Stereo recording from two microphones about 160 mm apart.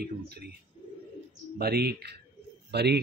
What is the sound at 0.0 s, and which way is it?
Speech, 80° right.